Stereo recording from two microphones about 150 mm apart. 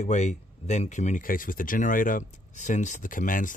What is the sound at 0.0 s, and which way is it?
Speech, 50° left (ahead or behind).